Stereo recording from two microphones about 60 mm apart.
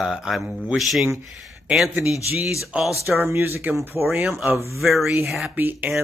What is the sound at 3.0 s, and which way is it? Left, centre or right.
Speech, right.